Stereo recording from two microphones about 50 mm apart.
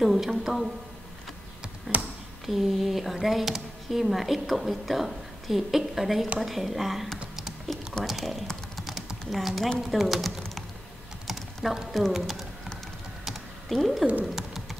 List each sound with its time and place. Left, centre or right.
0.0 s speech: centre
2.4 s speech: centre
7.3 s typing: centre
7.7 s speech: centre
11.2 s typing: centre
11.9 s speech: centre
13.2 s typing: centre
14.2 s bird: centre